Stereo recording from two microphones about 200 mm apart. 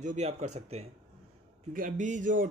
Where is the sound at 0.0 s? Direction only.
35° right (ahead or behind).